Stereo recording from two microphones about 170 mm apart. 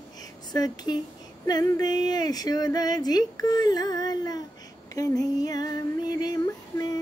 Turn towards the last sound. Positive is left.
turn(degrees=20)  # may be behind; listen again after turning